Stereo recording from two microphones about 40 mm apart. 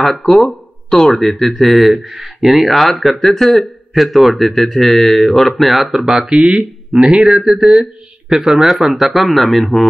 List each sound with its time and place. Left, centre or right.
0.0 s speech: centre
5.6 s speech: centre
5.9 s speech: centre